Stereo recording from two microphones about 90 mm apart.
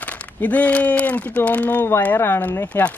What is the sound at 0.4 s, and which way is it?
Speech, 15° left (ahead or behind).